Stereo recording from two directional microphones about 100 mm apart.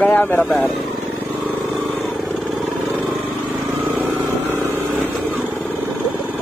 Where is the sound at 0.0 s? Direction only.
20° left (ahead or behind).